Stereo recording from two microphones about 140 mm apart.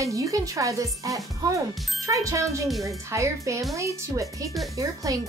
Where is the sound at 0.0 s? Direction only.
25° right (ahead or behind).